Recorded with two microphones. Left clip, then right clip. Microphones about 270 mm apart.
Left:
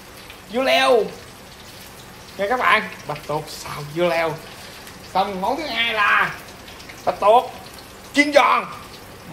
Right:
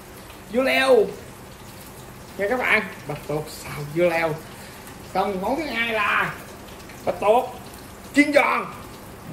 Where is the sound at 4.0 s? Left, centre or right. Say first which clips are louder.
Left 1 dB; centre.